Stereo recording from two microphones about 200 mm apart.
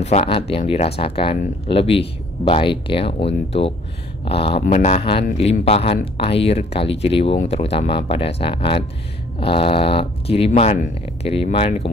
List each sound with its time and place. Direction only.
0.0 s speech: 30° left (ahead or behind)
4.6 s a sound: 35° left (ahead or behind)
5.4 s speech: 30° left (ahead or behind)